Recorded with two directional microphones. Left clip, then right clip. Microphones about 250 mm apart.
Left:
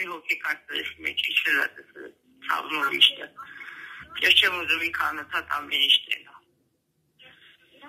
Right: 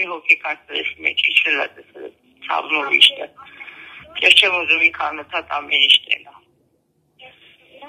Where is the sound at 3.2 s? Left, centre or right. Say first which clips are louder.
Right 7 dB; right.